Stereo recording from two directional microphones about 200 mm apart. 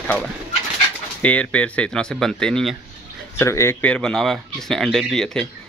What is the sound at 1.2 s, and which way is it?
Speech, 5° left (ahead or behind).